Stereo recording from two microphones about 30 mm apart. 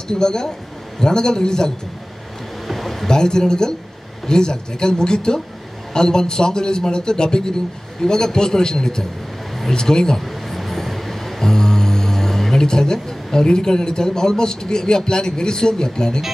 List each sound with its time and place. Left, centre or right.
0.1 s a man's voice: left
2.7 s a sound: centre
3.1 s a man's voice: left
10.2 s a sound: centre
11.5 s music: centre
12.6 s a man's voice: left